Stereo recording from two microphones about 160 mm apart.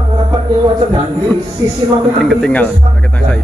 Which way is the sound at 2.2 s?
5° left (ahead or behind).